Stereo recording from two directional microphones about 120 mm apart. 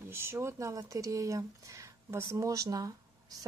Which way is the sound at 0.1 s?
20° right (ahead or behind).